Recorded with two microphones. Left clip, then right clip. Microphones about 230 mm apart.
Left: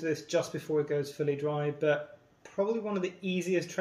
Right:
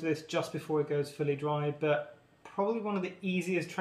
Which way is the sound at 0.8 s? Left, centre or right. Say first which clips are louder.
Left 1 dB; centre.